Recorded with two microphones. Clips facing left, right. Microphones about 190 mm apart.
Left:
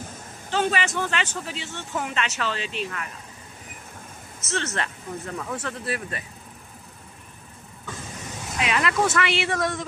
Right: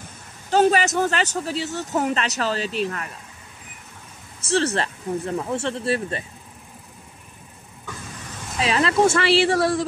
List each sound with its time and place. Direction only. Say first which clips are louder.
0.5 s speech: right 7 dB; 40° right (ahead or behind)
4.4 s speech: right 7 dB; 35° right (ahead or behind)
8.5 s speech: right 4 dB; 30° right (ahead or behind)